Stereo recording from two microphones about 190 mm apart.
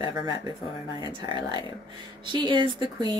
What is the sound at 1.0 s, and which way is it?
Speech, 20° right (ahead or behind).